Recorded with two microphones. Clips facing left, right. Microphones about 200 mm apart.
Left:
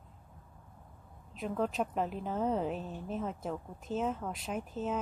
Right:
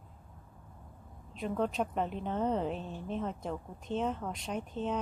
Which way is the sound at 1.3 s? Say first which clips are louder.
Right 1 dB; centre (ahead or behind).